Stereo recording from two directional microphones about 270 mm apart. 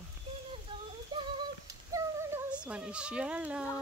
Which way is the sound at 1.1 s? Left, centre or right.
Centre.